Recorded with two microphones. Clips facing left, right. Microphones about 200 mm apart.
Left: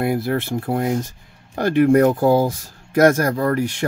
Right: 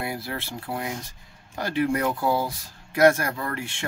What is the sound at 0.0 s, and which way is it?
Speech, 50° left (ahead or behind).